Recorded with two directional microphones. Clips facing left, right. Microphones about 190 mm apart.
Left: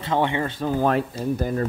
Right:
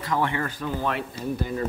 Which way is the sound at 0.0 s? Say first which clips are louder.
Left 3 dB; 20° left (ahead or behind).